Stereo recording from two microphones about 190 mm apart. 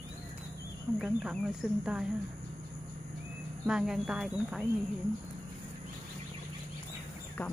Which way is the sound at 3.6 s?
5° right (ahead or behind).